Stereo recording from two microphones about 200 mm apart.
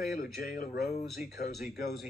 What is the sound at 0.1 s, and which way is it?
Speech, 45° left (ahead or behind).